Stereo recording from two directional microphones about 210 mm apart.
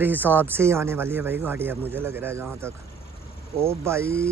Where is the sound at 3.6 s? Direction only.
10° right (ahead or behind).